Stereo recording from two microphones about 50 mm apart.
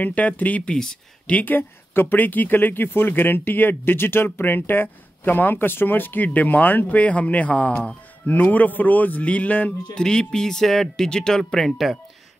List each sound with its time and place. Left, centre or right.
0.0 s speech: left
0.7 s speech: centre
1.2 s speech: left
1.5 s speech: left
9.9 s speech: centre